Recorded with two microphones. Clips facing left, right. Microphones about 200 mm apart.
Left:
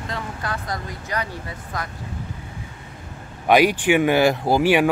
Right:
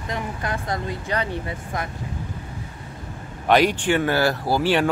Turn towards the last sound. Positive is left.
turn(degrees=15)  # may be behind; listen again after turning